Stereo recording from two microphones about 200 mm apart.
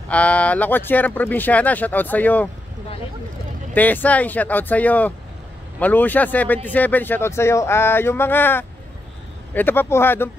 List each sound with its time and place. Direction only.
0.1 s speech: 5° left (ahead or behind)
3.7 s speech: 10° left (ahead or behind)